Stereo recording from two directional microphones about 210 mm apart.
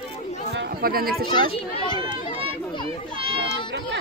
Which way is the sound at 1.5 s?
20° left (ahead or behind).